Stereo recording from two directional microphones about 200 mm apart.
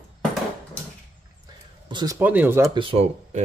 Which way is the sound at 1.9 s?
20° right (ahead or behind).